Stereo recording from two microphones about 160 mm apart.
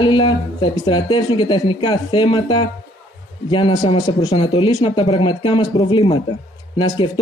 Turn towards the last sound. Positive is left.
turn(degrees=30)  # may be behind; listen again after turning